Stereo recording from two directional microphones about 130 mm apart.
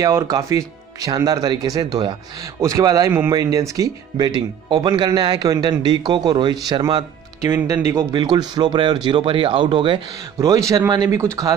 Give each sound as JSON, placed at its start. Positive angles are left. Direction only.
{"t": 0.0, "sound": "speech", "side_deg": -25}
{"t": 3.1, "sound": "speech", "side_deg": -15}
{"t": 3.3, "sound": "speech", "side_deg": -25}
{"t": 8.1, "sound": "speech", "side_deg": -30}